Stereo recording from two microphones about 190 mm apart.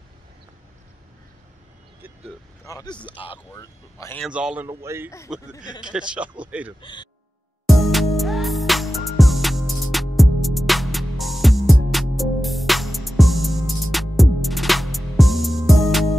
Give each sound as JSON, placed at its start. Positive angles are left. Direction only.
{"t": 2.6, "sound": "speech", "side_deg": 20}
{"t": 3.5, "sound": "speech", "side_deg": 15}
{"t": 4.2, "sound": "speech", "side_deg": -5}
{"t": 6.8, "sound": "speech", "side_deg": 25}
{"t": 7.6, "sound": "music", "side_deg": 0}